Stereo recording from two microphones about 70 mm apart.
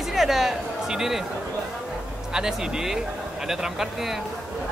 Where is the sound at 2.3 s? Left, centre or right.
Centre.